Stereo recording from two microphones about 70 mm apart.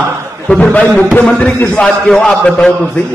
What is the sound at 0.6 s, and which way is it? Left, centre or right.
Speech, left.